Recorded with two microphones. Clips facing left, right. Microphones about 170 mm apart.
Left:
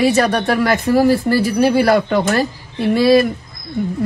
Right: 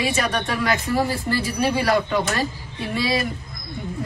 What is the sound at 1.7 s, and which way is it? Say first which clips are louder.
Speech: left 7 dB; 35° left (ahead or behind).